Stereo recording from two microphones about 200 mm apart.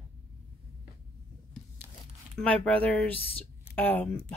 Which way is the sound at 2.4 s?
5° left (ahead or behind).